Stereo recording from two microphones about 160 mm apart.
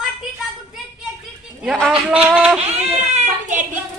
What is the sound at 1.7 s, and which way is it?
Speech, 5° left (ahead or behind).